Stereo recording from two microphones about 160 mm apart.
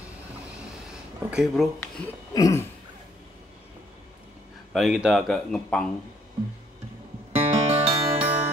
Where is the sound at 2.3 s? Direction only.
20° left (ahead or behind).